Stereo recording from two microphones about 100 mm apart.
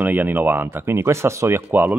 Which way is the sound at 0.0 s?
20° right (ahead or behind).